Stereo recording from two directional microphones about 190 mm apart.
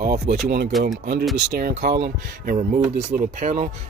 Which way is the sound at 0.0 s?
55° right (ahead or behind).